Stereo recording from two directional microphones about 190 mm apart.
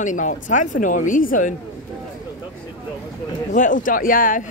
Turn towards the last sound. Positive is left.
turn(degrees=45)  # may be behind; listen again after turning